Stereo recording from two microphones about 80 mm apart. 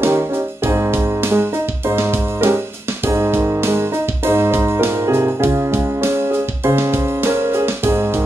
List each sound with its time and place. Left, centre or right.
1.3 s music: right
3.1 s piano: right
4.3 s keyboard: right
6.6 s music: right